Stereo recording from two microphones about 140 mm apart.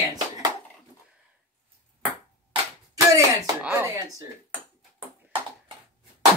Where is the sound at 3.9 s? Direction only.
25° right (ahead or behind).